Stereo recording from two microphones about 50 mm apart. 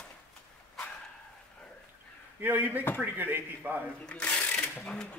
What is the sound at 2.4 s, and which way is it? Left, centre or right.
A man's voice, right.